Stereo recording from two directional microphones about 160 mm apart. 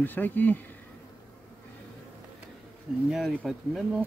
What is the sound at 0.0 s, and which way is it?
Speech, 10° left (ahead or behind).